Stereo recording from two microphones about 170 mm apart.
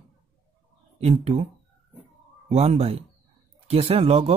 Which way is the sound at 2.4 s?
40° right (ahead or behind).